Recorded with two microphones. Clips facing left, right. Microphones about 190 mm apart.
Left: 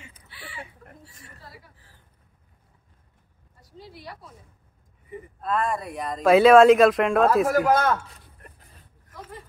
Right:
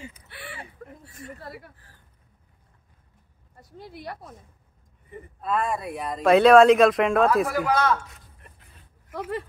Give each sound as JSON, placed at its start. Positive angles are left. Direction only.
{"t": 0.3, "sound": "a sound", "side_deg": -60}
{"t": 1.0, "sound": "a woman's voice", "side_deg": -55}
{"t": 3.6, "sound": "speech", "side_deg": -55}
{"t": 5.4, "sound": "speech", "side_deg": 0}
{"t": 7.4, "sound": "a man's voice", "side_deg": 45}
{"t": 8.5, "sound": "vehicle", "side_deg": 40}
{"t": 9.1, "sound": "dog", "side_deg": -70}